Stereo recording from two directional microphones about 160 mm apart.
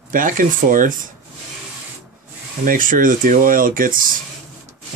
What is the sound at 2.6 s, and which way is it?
Speech, 60° right (ahead or behind).